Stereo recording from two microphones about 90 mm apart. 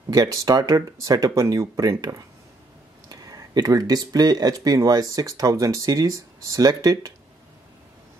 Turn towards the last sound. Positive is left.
turn(degrees=-45)  # may be behind; listen again after turning